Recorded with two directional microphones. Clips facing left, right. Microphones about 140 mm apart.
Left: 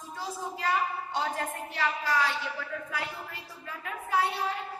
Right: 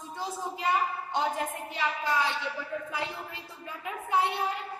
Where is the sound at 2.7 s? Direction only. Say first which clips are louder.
Right 2 dB; 25° right (ahead or behind).